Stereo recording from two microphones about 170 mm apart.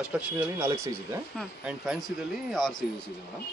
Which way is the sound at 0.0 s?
5° right (ahead or behind).